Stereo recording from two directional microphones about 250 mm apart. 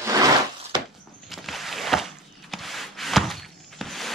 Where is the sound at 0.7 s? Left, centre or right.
Centre.